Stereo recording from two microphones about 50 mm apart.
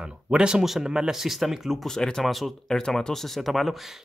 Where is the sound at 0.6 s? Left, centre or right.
Centre.